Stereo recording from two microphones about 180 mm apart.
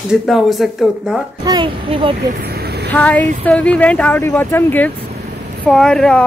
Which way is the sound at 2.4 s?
60° right (ahead or behind).